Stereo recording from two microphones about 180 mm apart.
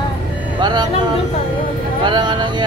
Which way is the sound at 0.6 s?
25° right (ahead or behind).